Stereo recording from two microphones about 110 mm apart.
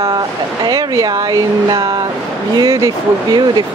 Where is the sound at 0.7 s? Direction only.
35° right (ahead or behind).